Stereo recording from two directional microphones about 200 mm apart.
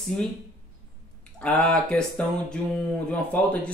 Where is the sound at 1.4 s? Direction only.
5° left (ahead or behind).